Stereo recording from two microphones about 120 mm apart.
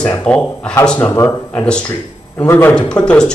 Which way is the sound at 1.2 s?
25° left (ahead or behind).